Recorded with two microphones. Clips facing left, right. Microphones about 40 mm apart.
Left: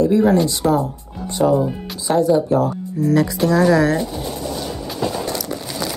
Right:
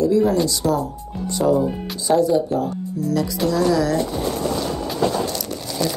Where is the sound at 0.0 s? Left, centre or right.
Left.